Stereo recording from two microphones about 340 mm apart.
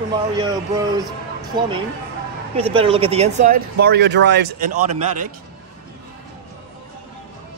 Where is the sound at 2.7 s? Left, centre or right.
Centre.